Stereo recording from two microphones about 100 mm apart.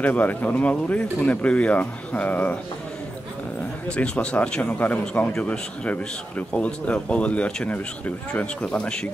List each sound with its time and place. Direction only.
0.0 s a man's voice: 15° left (ahead or behind)
3.9 s a man's voice: 10° left (ahead or behind)